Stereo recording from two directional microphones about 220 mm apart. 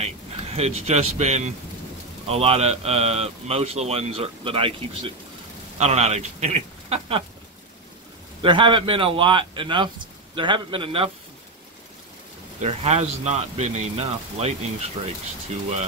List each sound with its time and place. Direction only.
0.0 s a man's voice: 30° right (ahead or behind)
8.4 s a man's voice: 20° right (ahead or behind)
12.5 s a man's voice: 30° right (ahead or behind)